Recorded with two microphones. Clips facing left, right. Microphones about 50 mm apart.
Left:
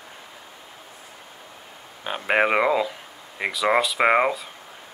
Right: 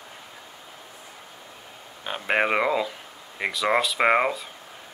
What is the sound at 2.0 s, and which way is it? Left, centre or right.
Speech, centre.